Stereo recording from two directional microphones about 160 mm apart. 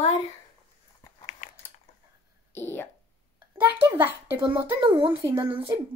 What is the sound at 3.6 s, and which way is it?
Speech, 10° right (ahead or behind).